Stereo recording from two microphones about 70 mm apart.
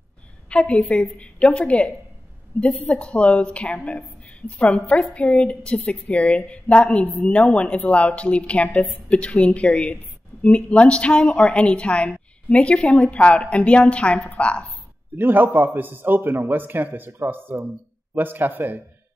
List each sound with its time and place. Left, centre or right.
0.5 s a woman's voice: centre
0.8 s a woman's voice: centre
1.1 s a woman's voice: centre
15.1 s a man's voice: right